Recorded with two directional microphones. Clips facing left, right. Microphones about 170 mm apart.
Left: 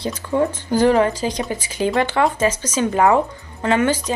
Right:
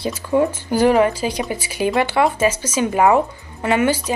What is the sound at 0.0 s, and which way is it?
A woman's voice, 10° right (ahead or behind).